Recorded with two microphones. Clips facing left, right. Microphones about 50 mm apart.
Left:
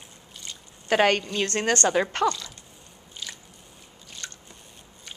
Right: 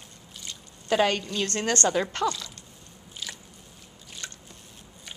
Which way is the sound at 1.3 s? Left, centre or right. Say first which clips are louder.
Left 3 dB; left.